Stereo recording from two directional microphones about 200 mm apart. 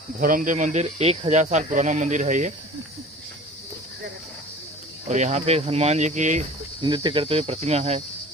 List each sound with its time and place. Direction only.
0.2 s speech: 40° right (ahead or behind)
5.0 s speech: 35° right (ahead or behind)
6.8 s speech: 20° right (ahead or behind)